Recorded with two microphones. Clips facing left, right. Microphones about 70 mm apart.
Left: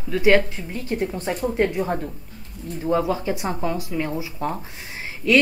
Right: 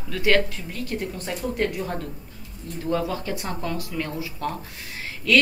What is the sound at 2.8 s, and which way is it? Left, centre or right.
Speech, centre.